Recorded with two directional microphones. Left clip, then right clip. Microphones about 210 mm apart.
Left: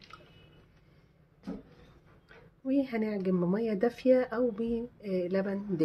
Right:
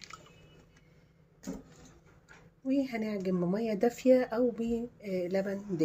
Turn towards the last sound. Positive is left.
turn(degrees=5)  # may be behind; listen again after turning